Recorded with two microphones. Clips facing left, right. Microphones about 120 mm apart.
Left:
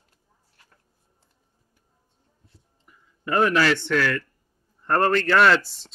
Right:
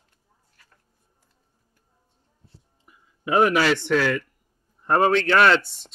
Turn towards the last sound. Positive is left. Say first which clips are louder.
# even
turn(degrees=0)  # may be behind; listen again after turning